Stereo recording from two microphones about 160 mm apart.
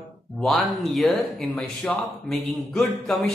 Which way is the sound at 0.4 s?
Centre (ahead or behind).